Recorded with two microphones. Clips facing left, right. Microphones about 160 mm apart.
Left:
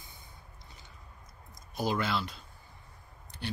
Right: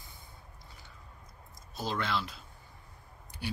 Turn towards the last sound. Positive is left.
turn(degrees=-10)  # may be behind; listen again after turning